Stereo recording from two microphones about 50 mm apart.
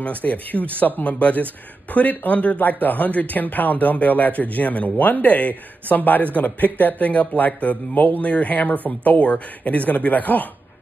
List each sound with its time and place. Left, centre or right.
0.0 s speech: left